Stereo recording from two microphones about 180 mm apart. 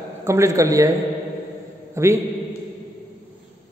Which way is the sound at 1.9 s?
15° right (ahead or behind).